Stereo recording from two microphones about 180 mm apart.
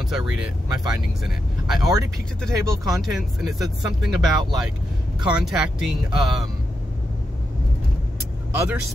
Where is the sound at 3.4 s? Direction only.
Centre (ahead or behind).